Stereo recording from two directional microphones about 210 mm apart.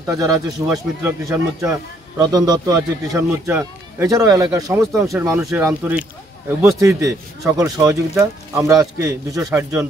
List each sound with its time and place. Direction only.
0.0 s a man's voice: 15° right (ahead or behind)